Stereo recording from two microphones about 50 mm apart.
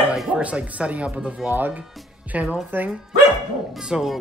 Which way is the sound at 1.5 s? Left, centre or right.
Right.